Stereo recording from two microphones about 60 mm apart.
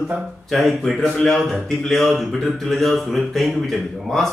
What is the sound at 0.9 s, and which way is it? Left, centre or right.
A man's voice, centre.